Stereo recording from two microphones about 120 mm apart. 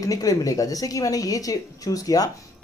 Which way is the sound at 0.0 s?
30° left (ahead or behind).